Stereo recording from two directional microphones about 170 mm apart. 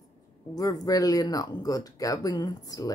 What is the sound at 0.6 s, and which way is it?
Speech, 20° left (ahead or behind).